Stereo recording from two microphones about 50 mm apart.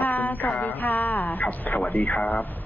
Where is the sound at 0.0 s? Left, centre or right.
Left.